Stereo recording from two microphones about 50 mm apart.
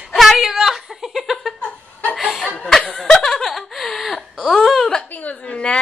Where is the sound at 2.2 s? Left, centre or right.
Centre.